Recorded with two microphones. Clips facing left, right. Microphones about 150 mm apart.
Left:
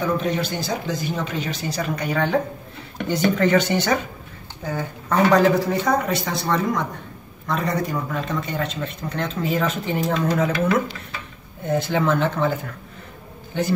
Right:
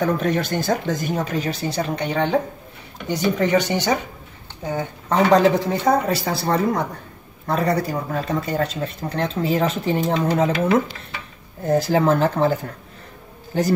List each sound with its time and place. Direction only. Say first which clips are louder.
0.0 s a woman's voice: right 2 dB; 45° right (ahead or behind)